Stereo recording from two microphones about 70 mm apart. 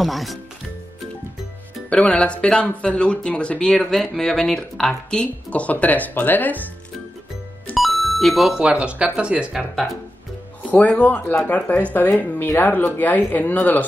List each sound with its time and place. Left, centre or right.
0.0 s speech: centre
1.9 s speech: centre
7.7 s music: centre
8.5 s speech: centre
9.5 s speech: centre
10.7 s speech: left